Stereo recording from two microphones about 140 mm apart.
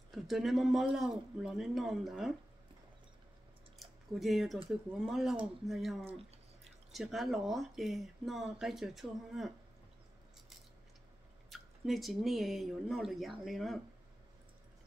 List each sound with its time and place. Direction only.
0.1 s speech: centre (ahead or behind)
3.8 s speech: centre (ahead or behind)
11.5 s speech: centre (ahead or behind)